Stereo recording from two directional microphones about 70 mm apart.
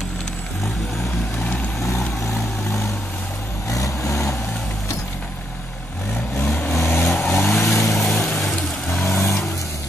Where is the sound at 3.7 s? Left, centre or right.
Left.